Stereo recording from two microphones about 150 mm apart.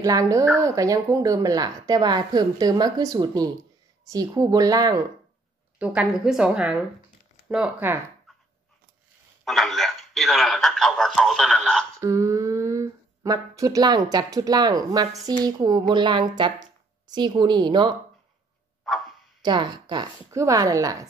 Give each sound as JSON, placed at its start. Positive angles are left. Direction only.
{"t": 0.0, "sound": "speech", "side_deg": -20}
{"t": 5.8, "sound": "a man's voice", "side_deg": -5}
{"t": 9.4, "sound": "a man's voice", "side_deg": 0}
{"t": 12.0, "sound": "speech", "side_deg": -20}
{"t": 18.9, "sound": "bow-wow", "side_deg": 0}
{"t": 19.4, "sound": "speech", "side_deg": -30}